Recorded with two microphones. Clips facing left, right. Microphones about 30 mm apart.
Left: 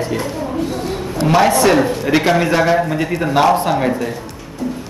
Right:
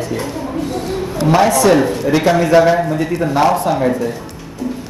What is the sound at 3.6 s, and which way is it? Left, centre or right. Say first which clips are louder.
Speech: right 1 dB; left.